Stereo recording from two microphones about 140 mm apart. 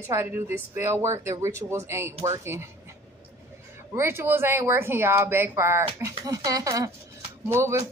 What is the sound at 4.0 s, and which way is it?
A woman's voice, 15° right (ahead or behind).